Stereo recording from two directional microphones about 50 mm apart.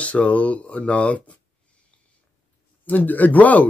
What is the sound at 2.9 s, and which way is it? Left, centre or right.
Speech, left.